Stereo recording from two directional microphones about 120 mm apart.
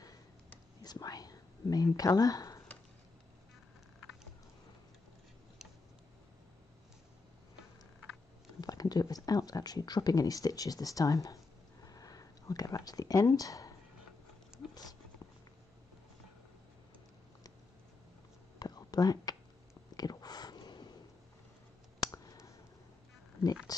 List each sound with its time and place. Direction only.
0.8 s whispering: 30° left (ahead or behind)
8.5 s speech: 30° left (ahead or behind)
14.7 s a sound: 35° left (ahead or behind)
18.6 s whispering: 35° left (ahead or behind)
20.0 s a sound: 35° left (ahead or behind)
22.0 s clicking: 30° left (ahead or behind)
23.7 s speech: 30° left (ahead or behind)